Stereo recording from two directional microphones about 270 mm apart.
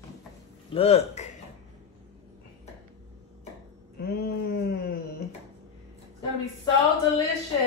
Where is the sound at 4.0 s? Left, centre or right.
Left.